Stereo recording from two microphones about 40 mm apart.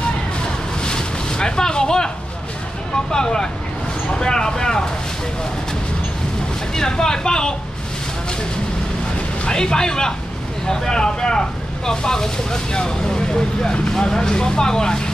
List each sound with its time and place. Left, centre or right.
0.7 s boat: left
3.1 s speech: centre
6.7 s speech: centre
9.4 s speech: left